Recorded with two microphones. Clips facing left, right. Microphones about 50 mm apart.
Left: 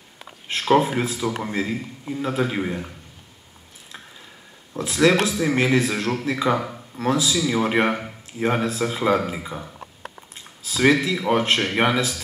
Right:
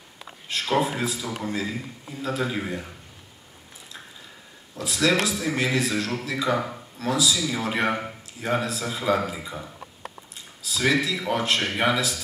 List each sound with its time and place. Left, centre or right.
0.5 s a man's voice: left
4.7 s a man's voice: left
10.6 s a man's voice: left